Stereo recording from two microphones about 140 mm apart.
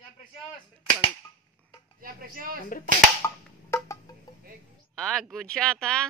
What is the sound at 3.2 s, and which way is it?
Wood block, 20° left (ahead or behind).